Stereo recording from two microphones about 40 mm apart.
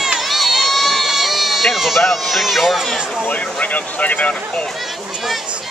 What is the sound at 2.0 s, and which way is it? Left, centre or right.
Speech, centre.